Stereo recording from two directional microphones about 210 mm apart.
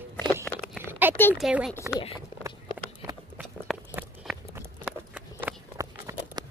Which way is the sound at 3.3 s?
5° right (ahead or behind).